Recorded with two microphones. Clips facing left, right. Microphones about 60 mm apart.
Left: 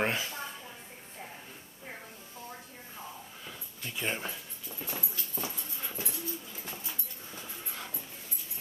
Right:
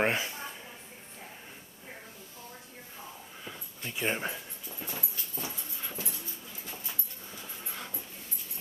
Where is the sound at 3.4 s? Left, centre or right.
Centre.